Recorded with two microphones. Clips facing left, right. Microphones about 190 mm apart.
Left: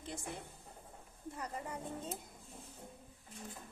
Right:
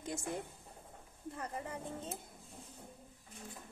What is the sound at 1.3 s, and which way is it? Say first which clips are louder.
Speech: right 1 dB; 50° right (ahead or behind).